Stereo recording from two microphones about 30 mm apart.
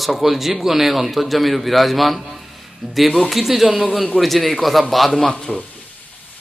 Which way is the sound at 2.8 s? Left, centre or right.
Centre.